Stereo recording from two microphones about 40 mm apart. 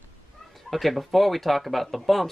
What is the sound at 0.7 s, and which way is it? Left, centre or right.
Speech, centre.